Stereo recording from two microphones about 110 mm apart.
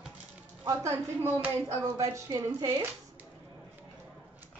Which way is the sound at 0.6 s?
25° right (ahead or behind).